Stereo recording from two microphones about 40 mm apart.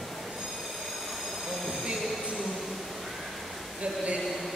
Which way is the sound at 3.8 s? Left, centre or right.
Right.